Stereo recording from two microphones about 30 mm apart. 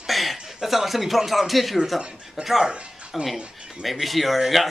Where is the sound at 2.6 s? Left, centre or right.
Right.